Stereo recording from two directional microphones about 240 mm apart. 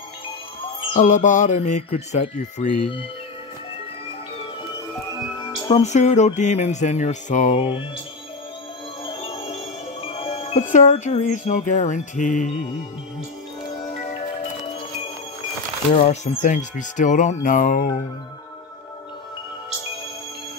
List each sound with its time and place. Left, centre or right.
0.7 s speech: left
5.4 s speech: centre
9.0 s music: left
10.0 s speech: left
15.9 s speech: left